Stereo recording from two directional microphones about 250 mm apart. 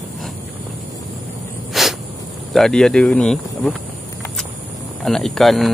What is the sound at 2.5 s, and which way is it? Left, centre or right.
Speech, centre.